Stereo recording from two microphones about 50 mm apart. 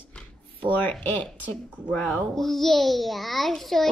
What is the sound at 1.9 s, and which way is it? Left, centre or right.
A child's voice, centre.